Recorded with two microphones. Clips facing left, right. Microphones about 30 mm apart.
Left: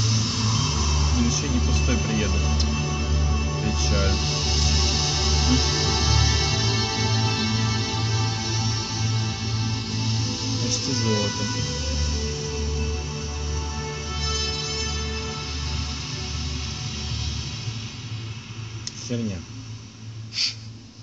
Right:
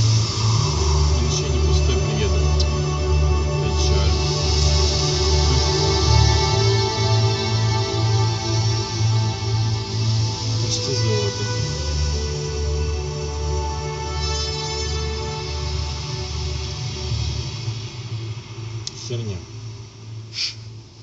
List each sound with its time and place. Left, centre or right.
0.0 s vehicle: right
0.7 s music: right
1.9 s music: right
9.8 s music: right
11.1 s music: right